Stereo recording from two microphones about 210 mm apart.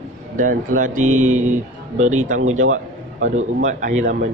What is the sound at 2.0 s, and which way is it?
Speech, 35° right (ahead or behind).